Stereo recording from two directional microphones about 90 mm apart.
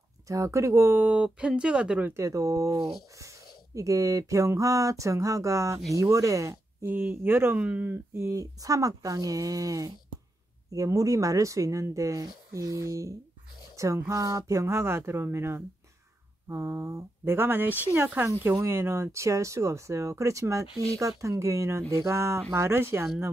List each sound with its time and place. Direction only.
0.3 s speech: 35° right (ahead or behind)
0.9 s speech: 15° right (ahead or behind)
2.0 s speech: 35° right (ahead or behind)
6.9 s speech: 25° right (ahead or behind)